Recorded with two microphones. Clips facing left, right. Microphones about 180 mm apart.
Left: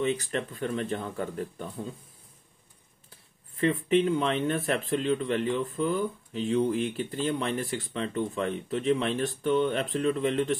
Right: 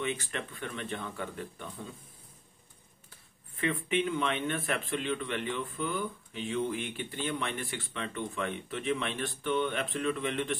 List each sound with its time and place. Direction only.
0.0 s speech: 35° left (ahead or behind)
3.5 s speech: 40° left (ahead or behind)